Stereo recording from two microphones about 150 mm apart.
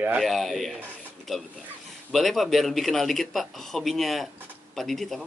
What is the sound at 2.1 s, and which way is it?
A man's voice, centre (ahead or behind).